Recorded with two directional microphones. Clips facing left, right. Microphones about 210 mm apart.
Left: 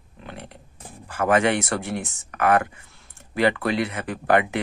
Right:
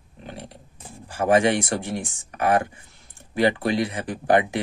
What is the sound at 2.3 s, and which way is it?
Speech, 30° right (ahead or behind).